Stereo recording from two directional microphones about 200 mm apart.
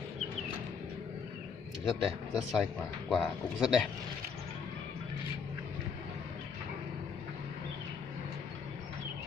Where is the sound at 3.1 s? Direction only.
Centre (ahead or behind).